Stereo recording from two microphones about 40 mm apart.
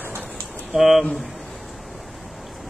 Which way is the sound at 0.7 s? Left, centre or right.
Centre.